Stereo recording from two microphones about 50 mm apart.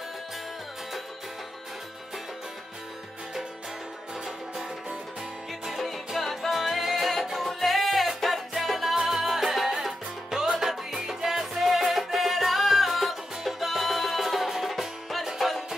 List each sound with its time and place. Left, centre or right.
5.7 s music: centre